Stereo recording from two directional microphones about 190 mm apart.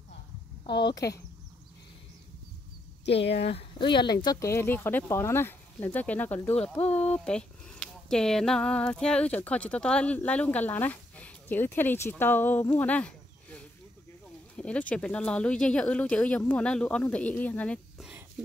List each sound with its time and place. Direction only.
3.1 s speech: 65° left (ahead or behind)
3.3 s speech: 30° left (ahead or behind); by 12.6 s 10° left (ahead or behind)
12.7 s a sound: 5° left (ahead or behind)
14.6 s speech: 5° left (ahead or behind)